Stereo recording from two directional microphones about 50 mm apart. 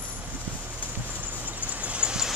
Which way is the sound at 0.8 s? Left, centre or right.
Right.